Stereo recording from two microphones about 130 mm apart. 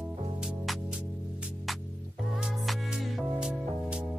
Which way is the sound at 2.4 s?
5° right (ahead or behind).